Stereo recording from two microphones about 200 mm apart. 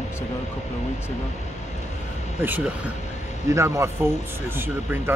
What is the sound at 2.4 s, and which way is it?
Speech, 10° right (ahead or behind).